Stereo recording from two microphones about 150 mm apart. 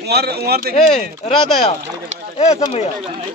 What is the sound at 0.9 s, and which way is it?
Speech, 55° left (ahead or behind).